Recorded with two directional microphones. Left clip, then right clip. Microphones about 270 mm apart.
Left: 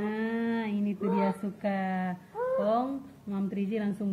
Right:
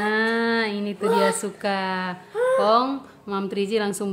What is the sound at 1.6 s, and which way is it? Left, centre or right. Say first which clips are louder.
Speech: right 5 dB; right.